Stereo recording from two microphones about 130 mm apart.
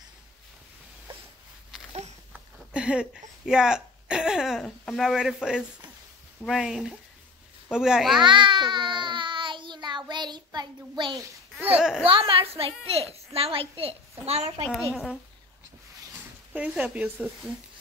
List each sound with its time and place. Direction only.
1.9 s a sound: 55° right (ahead or behind)
2.3 s speech: 10° right (ahead or behind)
8.2 s a sound: 40° right (ahead or behind)
11.7 s speech: 5° right (ahead or behind)
12.1 s a woman's voice: 45° right (ahead or behind)
14.7 s speech: centre (ahead or behind)
16.5 s speech: 10° right (ahead or behind)